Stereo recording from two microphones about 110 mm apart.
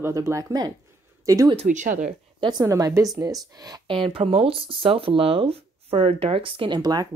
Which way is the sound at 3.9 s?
50° right (ahead or behind).